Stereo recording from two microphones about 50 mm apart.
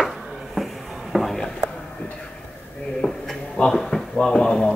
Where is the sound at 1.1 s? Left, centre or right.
Centre.